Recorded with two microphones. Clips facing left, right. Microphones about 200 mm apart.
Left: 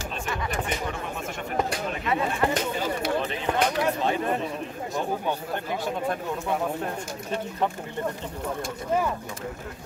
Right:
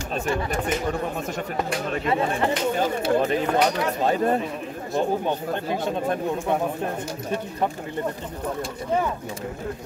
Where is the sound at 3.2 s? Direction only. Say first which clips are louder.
Right 5 dB; 45° right (ahead or behind).